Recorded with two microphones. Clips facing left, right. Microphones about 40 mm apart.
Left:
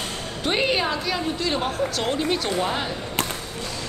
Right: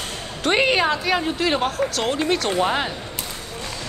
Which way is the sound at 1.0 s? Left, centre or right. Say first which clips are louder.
Right 4 dB; right.